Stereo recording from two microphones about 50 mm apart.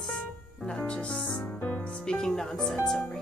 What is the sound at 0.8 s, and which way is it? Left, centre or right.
Speech, left.